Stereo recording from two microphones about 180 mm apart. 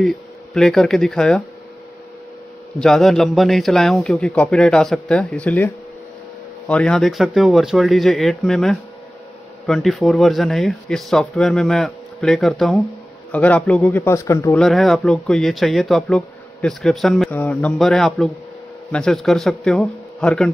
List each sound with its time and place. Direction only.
0.0 s speech: centre (ahead or behind)
2.8 s speech: centre (ahead or behind)
6.7 s speech: 5° left (ahead or behind)
14.6 s speech: centre (ahead or behind)